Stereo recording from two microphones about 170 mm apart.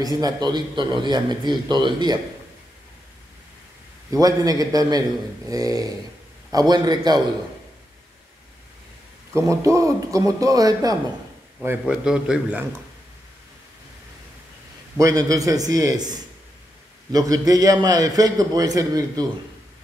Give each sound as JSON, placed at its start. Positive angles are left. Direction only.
{"t": 0.0, "sound": "a man's voice", "side_deg": -20}
{"t": 4.1, "sound": "a man's voice", "side_deg": -20}
{"t": 9.3, "sound": "a man's voice", "side_deg": -20}
{"t": 11.8, "sound": "a man's voice", "side_deg": -5}
{"t": 15.0, "sound": "a man's voice", "side_deg": -20}